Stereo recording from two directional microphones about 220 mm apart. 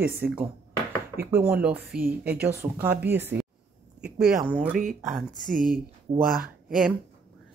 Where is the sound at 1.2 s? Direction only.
10° right (ahead or behind).